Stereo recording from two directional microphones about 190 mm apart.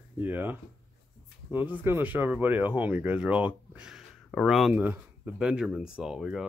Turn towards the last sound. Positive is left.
turn(degrees=-5)  # may be behind; listen again after turning